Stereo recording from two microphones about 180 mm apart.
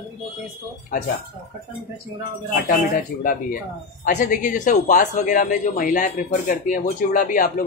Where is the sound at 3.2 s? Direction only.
50° left (ahead or behind).